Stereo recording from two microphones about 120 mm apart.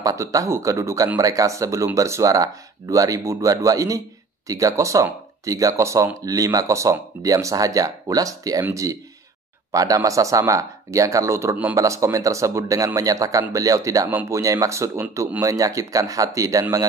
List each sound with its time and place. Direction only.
0.0 s speech: 25° right (ahead or behind)